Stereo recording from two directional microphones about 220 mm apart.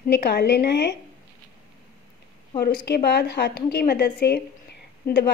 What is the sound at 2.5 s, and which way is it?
A woman's voice, 45° left (ahead or behind).